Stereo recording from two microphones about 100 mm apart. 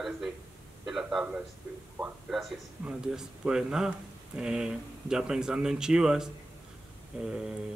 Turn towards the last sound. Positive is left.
turn(degrees=-5)  # may be behind; listen again after turning